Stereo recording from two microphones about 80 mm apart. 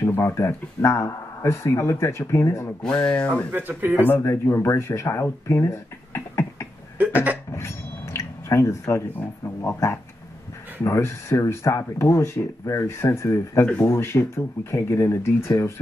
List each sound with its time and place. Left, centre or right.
0.0 s speech: left
3.1 s speech: left
3.5 s a man's voice: right
4.2 s speech: left
7.5 s a sound: left
9.4 s speech: left